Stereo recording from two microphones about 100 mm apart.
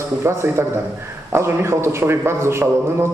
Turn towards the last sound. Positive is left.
turn(degrees=-25)  # may be behind; listen again after turning